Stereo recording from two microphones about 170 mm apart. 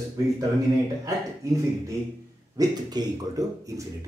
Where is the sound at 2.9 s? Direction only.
20° right (ahead or behind).